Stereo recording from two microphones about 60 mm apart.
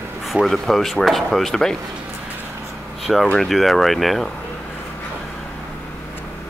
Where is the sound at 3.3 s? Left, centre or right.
Centre.